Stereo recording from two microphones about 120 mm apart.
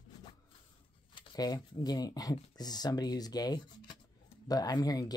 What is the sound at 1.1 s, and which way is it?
Speech, 35° left (ahead or behind).